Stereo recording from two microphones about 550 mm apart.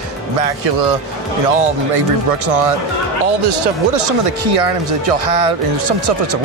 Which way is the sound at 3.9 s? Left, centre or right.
Right.